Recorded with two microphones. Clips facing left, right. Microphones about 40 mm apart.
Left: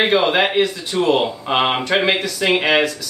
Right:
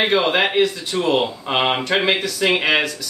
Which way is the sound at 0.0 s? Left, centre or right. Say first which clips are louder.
Left 2 dB; centre.